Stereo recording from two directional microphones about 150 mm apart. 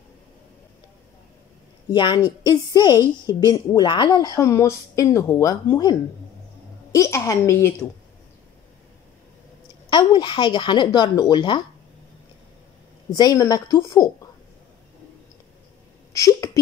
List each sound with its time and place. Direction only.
1.9 s a woman's voice: 30° left (ahead or behind)
4.4 s a woman's voice: 20° left (ahead or behind)
9.8 s speech: 30° left (ahead or behind)
13.1 s a woman's voice: 25° left (ahead or behind)
16.1 s a sound: 20° left (ahead or behind)